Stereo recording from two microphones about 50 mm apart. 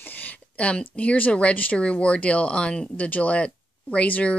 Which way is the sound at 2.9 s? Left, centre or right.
Left.